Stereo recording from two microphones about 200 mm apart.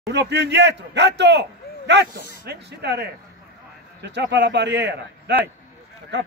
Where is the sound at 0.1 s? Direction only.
60° right (ahead or behind).